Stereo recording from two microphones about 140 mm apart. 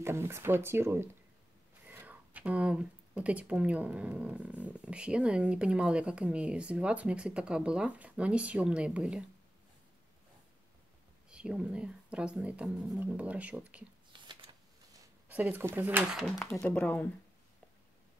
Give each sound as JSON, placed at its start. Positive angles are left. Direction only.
{"t": 0.0, "sound": "speech", "side_deg": -15}
{"t": 11.2, "sound": "speech", "side_deg": -5}
{"t": 14.1, "sound": "shuffling cards", "side_deg": -35}
{"t": 15.3, "sound": "speech", "side_deg": -10}
{"t": 16.2, "sound": "speech", "side_deg": 5}